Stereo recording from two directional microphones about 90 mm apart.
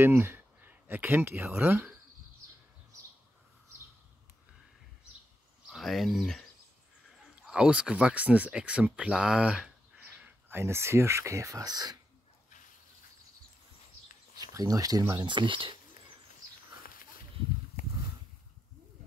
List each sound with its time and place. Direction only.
0.0 s speech: 30° right (ahead or behind)
5.7 s speech: centre (ahead or behind)
7.4 s speech: 10° right (ahead or behind)
10.6 s speech: 30° right (ahead or behind); by 12.0 s 50° right (ahead or behind)
14.3 s a sound: 45° right (ahead or behind)
15.2 s speech: 65° right (ahead or behind)